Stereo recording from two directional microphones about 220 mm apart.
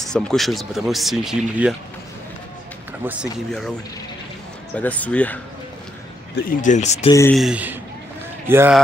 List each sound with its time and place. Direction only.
0.0 s speech: centre (ahead or behind)
4.7 s speech: 5° left (ahead or behind)
6.3 s speech: 35° left (ahead or behind)
7.1 s speech: 15° left (ahead or behind)
7.3 s speech: 5° right (ahead or behind)